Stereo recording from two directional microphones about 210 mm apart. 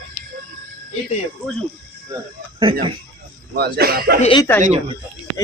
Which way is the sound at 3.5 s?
45° right (ahead or behind).